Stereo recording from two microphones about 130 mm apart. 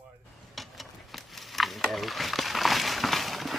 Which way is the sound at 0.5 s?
Centre (ahead or behind).